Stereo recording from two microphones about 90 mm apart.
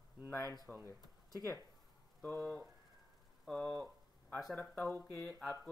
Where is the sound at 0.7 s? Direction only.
5° left (ahead or behind).